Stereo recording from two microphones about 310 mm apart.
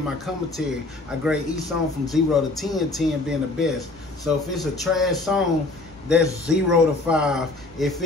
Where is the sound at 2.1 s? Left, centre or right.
Centre.